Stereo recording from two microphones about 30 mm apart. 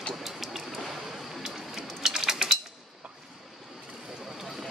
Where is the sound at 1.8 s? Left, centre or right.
Centre.